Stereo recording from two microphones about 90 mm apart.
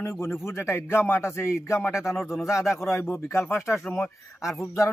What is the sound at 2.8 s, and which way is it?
A man's voice, 30° left (ahead or behind).